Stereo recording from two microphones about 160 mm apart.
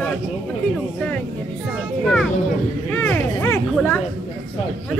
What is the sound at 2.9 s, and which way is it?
Speech, 10° left (ahead or behind).